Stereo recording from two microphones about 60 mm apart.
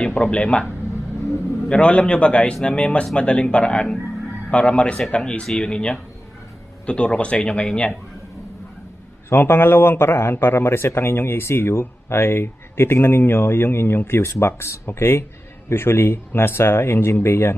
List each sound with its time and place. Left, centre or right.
0.1 s a man's voice: left
1.7 s a man's voice: centre
9.3 s speech: left